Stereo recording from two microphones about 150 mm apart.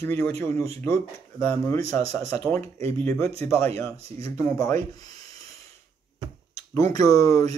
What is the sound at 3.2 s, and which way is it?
Speech, 40° right (ahead or behind).